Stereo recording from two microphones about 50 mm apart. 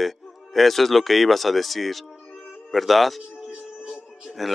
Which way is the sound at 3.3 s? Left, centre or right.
Right.